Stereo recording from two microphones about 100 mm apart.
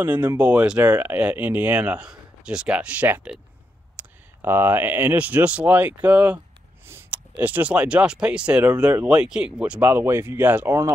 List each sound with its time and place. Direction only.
0.0 s speech: 20° right (ahead or behind)